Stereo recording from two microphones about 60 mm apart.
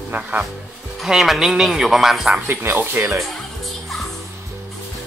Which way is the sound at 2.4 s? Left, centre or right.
Right.